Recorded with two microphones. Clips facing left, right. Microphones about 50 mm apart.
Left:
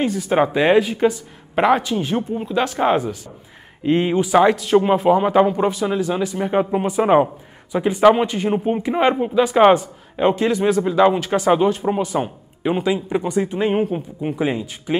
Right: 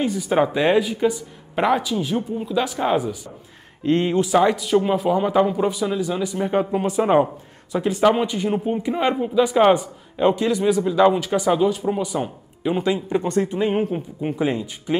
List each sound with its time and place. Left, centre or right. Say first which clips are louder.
0.3 s speech: left 2 dB; left
3.8 s a man's voice: left 1 dB; centre; by 6.3 s left
6.4 s a man's voice: left 1 dB; left
11.1 s speech: left 2 dB; left
12.8 s speech: left 1 dB; centre
13.5 s a man's voice: left 2 dB; left
13.7 s speech: left 2 dB; centre
14.3 s a man's voice: left 1 dB; left